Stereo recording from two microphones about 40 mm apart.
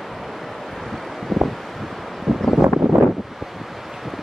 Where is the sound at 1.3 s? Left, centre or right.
Centre.